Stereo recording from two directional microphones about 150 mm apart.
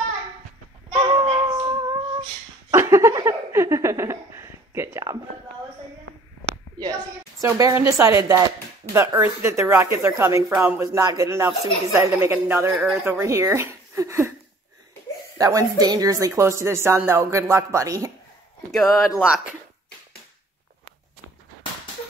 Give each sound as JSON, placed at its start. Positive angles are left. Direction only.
{"t": 0.9, "sound": "music", "side_deg": -30}
{"t": 2.7, "sound": "a sound", "side_deg": -20}
{"t": 7.4, "sound": "speech", "side_deg": -20}
{"t": 15.3, "sound": "speech", "side_deg": -20}
{"t": 18.7, "sound": "speech", "side_deg": 0}